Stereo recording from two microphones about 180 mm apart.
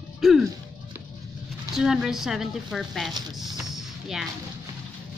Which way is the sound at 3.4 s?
Centre (ahead or behind).